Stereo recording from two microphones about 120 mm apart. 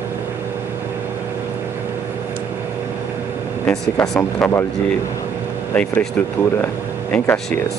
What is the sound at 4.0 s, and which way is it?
Speech, 20° left (ahead or behind).